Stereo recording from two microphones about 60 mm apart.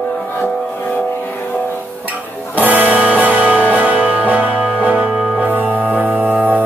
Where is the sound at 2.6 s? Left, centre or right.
Right.